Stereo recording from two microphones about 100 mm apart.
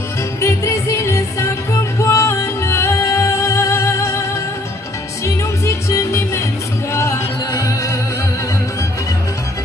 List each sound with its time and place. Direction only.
0.4 s music: 30° left (ahead or behind)
5.2 s music: 30° left (ahead or behind)